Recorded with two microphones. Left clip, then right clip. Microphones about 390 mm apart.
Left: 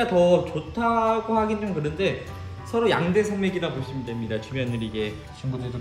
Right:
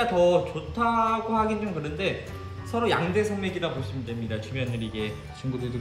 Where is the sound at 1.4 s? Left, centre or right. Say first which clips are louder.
Left 2 dB; centre.